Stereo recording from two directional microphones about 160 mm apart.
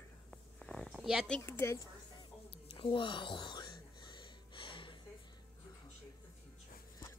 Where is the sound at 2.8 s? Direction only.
30° left (ahead or behind).